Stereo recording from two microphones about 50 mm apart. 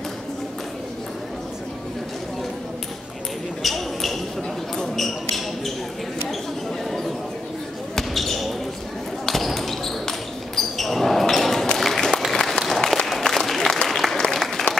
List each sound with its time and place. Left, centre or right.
3.6 s basketball bounce: centre
7.9 s basketball bounce: centre
11.8 s applause: centre
14.7 s applause: left